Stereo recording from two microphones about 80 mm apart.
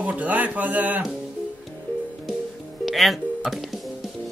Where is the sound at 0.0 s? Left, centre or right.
Centre.